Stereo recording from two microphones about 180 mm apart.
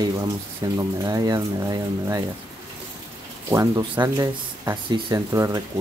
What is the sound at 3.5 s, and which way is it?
Speech, 20° right (ahead or behind).